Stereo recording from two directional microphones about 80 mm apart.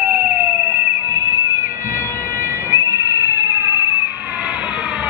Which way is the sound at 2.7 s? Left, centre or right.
Right.